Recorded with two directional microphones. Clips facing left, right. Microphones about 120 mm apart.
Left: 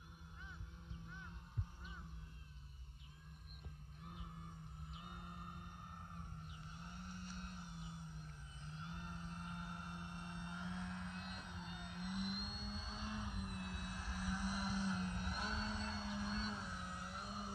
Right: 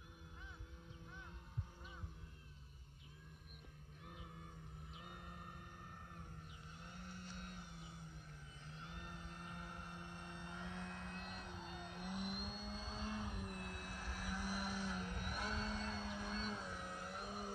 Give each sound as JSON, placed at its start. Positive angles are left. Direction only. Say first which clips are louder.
{"t": 4.9, "sound": "vehicle", "louder": "left 2 dB", "side_deg": 10}
{"t": 6.8, "sound": "vehicle", "louder": "left 1 dB", "side_deg": 25}
{"t": 8.8, "sound": "vehicle", "louder": "left 3 dB", "side_deg": 15}
{"t": 15.9, "sound": "music", "louder": "left 1 dB", "side_deg": 5}